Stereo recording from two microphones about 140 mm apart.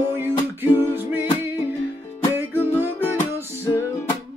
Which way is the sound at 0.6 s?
15° right (ahead or behind).